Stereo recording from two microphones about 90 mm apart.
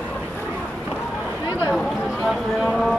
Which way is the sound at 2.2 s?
5° right (ahead or behind).